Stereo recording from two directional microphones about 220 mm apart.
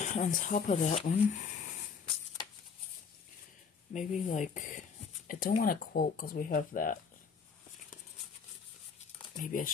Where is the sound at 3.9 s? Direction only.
35° left (ahead or behind).